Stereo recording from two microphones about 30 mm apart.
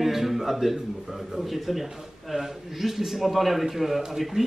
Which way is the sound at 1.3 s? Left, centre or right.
Centre.